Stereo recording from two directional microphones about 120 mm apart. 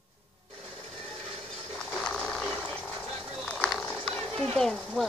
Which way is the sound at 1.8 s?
10° left (ahead or behind).